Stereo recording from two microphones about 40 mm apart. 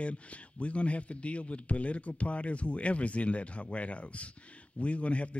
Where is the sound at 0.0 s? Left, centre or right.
Left.